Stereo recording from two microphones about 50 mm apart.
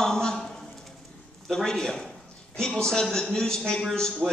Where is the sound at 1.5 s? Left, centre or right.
Centre.